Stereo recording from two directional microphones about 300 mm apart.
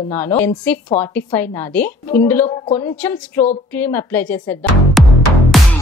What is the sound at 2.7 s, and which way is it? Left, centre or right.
A woman's voice, centre.